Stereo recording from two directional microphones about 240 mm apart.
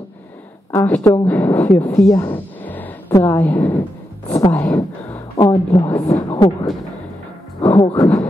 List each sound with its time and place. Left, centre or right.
0.7 s a woman's voice: centre
5.4 s a woman's voice: left